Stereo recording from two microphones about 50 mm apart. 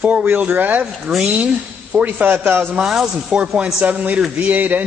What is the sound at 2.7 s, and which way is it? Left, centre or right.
Speech, centre.